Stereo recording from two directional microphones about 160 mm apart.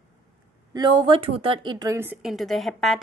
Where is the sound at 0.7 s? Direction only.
25° right (ahead or behind).